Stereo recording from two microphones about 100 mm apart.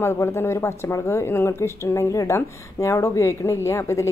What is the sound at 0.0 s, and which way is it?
A woman's voice, 25° left (ahead or behind).